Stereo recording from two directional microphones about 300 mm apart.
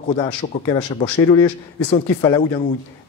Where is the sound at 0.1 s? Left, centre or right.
Centre.